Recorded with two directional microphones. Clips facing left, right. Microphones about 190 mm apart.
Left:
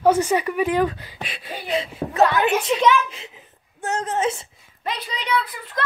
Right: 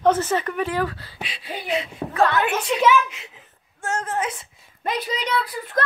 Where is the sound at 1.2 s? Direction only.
55° left (ahead or behind).